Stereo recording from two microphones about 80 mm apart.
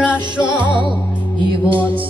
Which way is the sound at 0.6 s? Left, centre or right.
Right.